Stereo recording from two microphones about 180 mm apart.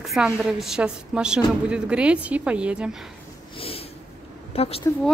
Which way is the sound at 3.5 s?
30° left (ahead or behind).